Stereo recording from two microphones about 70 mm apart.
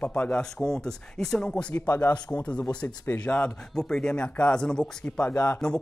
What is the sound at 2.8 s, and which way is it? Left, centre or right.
Speech, left.